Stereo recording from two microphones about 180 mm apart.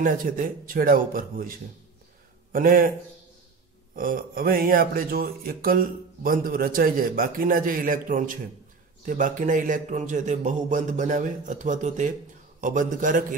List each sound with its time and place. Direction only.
0.0 s speech: 50° right (ahead or behind)
2.5 s speech: 50° right (ahead or behind)
3.9 s speech: 50° right (ahead or behind)